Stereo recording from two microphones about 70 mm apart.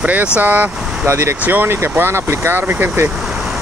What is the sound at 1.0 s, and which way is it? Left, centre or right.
Speech, right.